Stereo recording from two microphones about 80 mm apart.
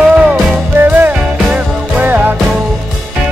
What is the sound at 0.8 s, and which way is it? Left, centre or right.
Music, centre.